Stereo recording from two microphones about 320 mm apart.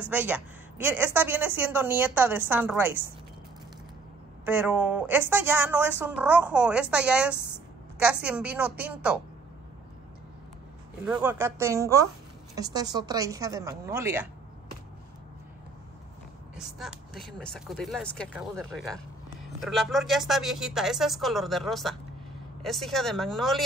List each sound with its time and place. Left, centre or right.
0.0 s a woman's voice: centre
4.5 s a woman's voice: centre
11.1 s a woman's voice: centre
16.5 s a woman's voice: centre